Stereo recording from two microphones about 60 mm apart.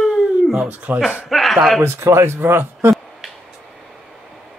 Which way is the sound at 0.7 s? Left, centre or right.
Right.